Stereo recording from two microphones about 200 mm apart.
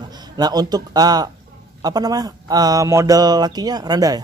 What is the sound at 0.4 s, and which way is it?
Speech, 20° right (ahead or behind).